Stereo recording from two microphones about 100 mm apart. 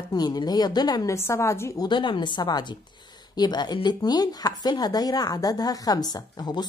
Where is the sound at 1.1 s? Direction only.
30° left (ahead or behind).